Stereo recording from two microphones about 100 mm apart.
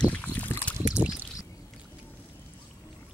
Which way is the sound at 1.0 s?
15° right (ahead or behind).